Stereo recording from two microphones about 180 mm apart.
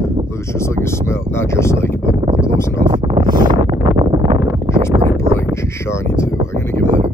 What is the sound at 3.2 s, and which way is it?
Wind noise, 25° right (ahead or behind).